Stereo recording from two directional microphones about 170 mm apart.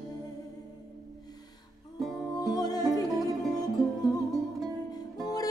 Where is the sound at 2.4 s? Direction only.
20° left (ahead or behind).